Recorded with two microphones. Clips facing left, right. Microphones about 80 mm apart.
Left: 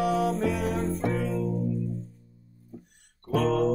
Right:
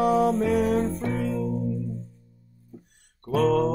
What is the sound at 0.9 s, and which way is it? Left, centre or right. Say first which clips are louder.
Music: left 1 dB; left.